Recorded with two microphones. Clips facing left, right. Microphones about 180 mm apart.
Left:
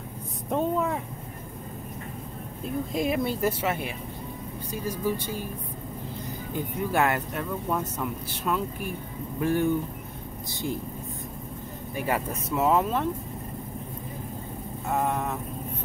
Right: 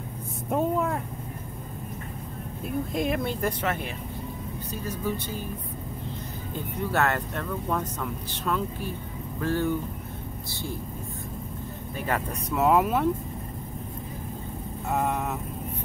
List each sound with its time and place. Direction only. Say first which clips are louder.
0.5 s vehicle: even; 5° right (ahead or behind)
2.6 s speech: even; centre (ahead or behind)
6.5 s speech: left 1 dB; 10° left (ahead or behind)
12.0 s speech: left 1 dB; 5° left (ahead or behind)
14.9 s speech: even; centre (ahead or behind)